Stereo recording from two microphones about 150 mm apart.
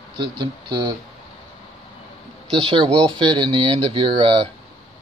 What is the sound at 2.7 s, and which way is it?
Speech, 30° right (ahead or behind).